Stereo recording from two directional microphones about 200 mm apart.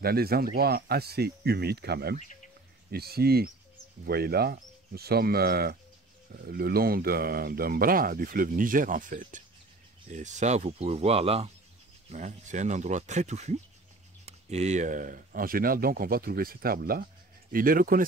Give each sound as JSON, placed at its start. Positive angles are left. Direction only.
{"t": 0.0, "sound": "speech", "side_deg": -50}